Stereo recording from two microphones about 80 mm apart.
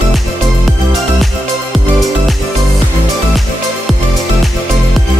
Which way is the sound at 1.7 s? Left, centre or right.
Centre.